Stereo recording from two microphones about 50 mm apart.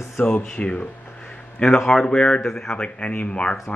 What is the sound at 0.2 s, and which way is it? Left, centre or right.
Speech, left.